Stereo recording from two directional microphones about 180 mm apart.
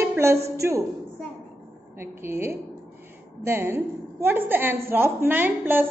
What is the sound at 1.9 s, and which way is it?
A woman's voice, 15° right (ahead or behind).